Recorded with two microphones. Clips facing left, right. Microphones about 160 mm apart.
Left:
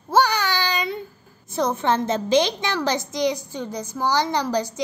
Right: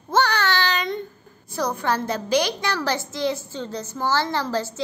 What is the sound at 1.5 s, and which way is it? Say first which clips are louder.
A woman's voice: left 3 dB; 20° left (ahead or behind).